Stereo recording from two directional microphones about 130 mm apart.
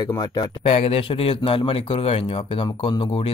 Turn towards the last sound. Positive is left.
turn(degrees=40)  # may be behind; listen again after turning